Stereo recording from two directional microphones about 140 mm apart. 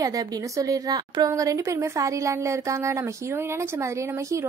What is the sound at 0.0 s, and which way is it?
A woman's voice, 25° right (ahead or behind).